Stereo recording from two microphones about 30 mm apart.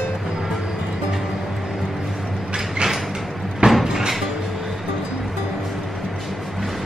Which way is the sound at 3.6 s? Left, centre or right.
Right.